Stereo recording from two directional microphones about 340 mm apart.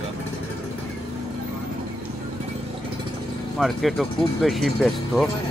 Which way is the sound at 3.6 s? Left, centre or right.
Centre.